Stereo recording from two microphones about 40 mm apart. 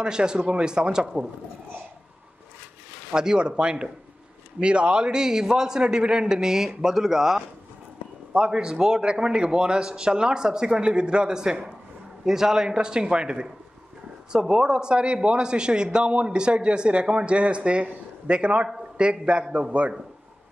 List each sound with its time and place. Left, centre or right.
0.0 s speech: centre
3.1 s a man's voice: right
8.5 s speech: centre